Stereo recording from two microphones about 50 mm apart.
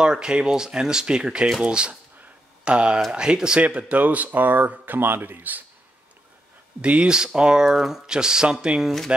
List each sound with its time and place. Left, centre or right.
0.0 s speech: centre
3.6 s speech: right
6.8 s speech: right